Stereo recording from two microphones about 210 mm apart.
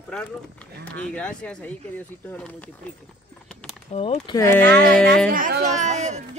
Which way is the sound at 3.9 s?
30° left (ahead or behind).